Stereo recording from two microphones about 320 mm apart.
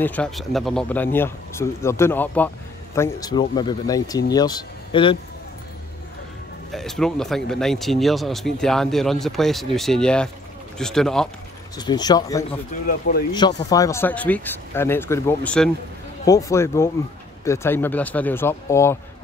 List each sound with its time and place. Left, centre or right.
0.0 s speech: centre
6.7 s speech: centre
11.7 s speech: centre
12.8 s speech: left
13.3 s speech: centre